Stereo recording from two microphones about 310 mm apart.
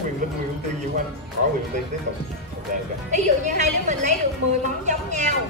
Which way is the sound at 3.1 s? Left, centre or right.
Right.